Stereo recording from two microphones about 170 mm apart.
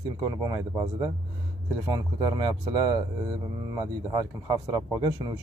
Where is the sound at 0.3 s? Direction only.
20° right (ahead or behind).